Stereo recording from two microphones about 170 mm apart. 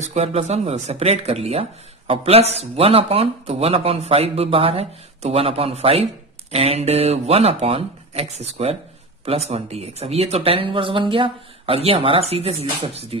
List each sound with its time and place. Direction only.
0.0 s speech: 40° right (ahead or behind)